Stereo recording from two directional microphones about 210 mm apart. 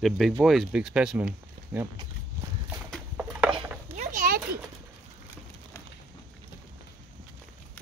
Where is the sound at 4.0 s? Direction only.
40° right (ahead or behind).